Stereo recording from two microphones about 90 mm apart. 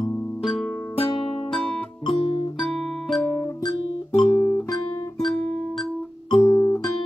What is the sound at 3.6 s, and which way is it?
Music, 50° left (ahead or behind).